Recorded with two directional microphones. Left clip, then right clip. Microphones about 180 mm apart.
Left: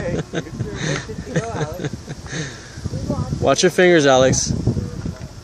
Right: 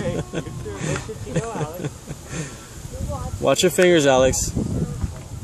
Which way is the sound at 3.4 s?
10° left (ahead or behind).